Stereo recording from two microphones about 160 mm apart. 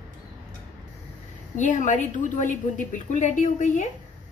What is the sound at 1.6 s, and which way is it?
A woman's voice, 50° left (ahead or behind).